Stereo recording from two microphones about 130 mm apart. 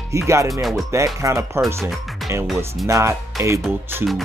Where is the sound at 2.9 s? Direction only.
20° right (ahead or behind).